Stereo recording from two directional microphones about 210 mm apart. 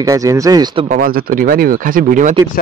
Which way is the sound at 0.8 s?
40° right (ahead or behind).